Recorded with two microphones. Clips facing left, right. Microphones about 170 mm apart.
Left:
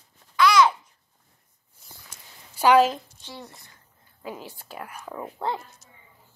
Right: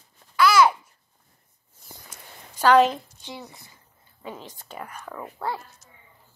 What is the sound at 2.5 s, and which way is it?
A woman's voice, 5° left (ahead or behind).